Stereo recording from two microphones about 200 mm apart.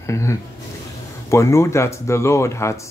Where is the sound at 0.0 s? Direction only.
15° left (ahead or behind).